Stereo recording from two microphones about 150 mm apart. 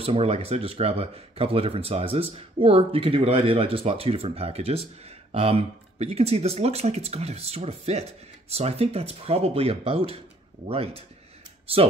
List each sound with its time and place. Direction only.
0.0 s speech: 40° right (ahead or behind)